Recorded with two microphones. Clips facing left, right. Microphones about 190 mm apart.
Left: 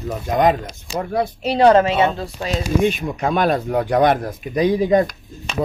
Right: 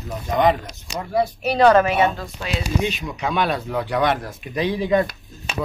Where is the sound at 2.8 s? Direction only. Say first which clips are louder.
Left 6 dB; 50° left (ahead or behind).